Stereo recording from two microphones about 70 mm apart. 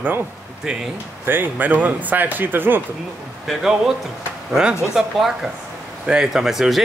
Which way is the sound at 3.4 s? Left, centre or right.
Centre.